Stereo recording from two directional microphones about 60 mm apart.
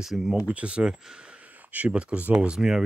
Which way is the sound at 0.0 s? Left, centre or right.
Centre.